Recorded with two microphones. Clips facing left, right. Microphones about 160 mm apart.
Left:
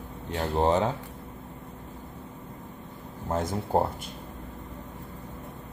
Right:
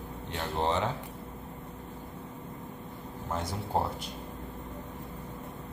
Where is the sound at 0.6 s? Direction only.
40° left (ahead or behind).